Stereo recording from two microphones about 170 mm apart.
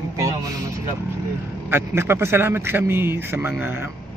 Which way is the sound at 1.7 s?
15° right (ahead or behind).